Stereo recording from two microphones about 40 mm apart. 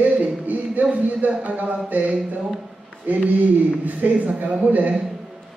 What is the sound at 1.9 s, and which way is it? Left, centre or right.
A man's voice, right.